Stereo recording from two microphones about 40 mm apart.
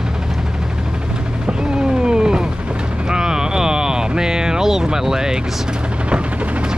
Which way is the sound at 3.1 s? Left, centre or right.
Centre.